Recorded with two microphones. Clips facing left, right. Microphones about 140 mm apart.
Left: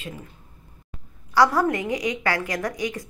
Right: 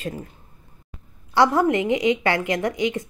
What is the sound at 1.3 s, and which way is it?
A woman's voice, 25° right (ahead or behind).